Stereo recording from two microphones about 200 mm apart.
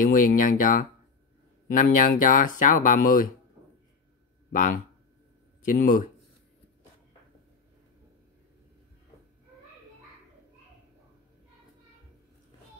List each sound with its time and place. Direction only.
0.0 s speech: 45° left (ahead or behind)
4.5 s speech: 40° left (ahead or behind)